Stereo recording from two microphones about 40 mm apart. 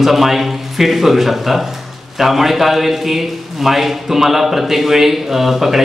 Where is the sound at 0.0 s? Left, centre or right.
Centre.